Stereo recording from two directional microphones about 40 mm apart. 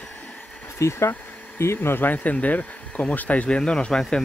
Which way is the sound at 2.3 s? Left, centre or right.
Left.